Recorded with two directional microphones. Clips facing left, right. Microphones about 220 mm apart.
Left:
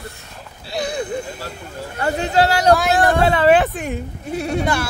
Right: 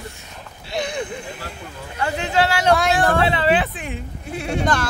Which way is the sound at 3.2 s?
45° left (ahead or behind).